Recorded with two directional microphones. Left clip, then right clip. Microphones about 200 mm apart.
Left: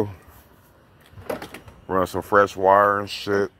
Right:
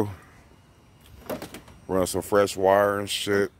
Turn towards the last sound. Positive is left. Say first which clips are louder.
# left 1 dB
turn(degrees=-5)  # may be behind; listen again after turning